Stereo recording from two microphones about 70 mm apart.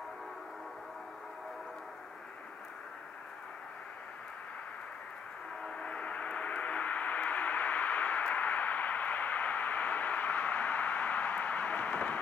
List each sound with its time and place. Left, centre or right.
5.6 s gong: centre